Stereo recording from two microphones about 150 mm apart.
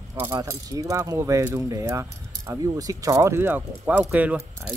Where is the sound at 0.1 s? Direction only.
20° right (ahead or behind).